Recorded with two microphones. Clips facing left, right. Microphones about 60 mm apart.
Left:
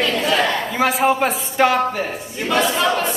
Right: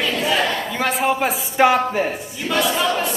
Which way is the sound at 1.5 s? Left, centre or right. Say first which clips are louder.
Right 2 dB; centre.